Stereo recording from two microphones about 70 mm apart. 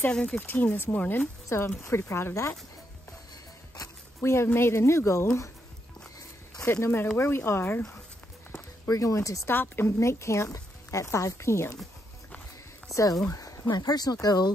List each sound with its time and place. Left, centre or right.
0.1 s speech: centre
0.4 s speech: left
1.8 s a woman's voice: left
4.2 s a woman's voice: left
6.6 s a woman's voice: left
8.8 s speech: left
9.5 s a woman's voice: left
9.9 s speech: left
13.3 s a sound: left
13.7 s speech: left